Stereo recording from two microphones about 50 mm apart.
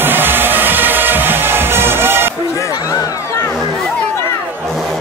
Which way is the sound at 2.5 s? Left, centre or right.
Left.